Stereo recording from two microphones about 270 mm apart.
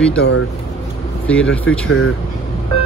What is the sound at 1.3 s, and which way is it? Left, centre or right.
Speech, centre.